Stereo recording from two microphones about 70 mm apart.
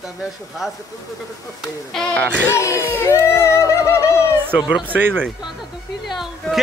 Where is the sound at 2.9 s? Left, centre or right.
Left.